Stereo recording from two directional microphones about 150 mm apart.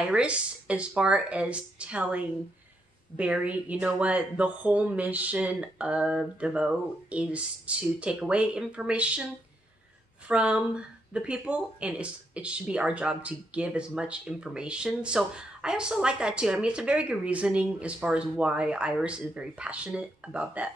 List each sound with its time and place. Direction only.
0.1 s speech: 10° right (ahead or behind)
10.2 s speech: 5° right (ahead or behind)